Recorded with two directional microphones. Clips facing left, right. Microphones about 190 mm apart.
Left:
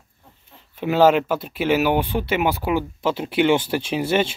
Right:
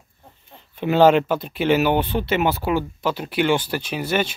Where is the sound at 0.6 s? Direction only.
5° left (ahead or behind).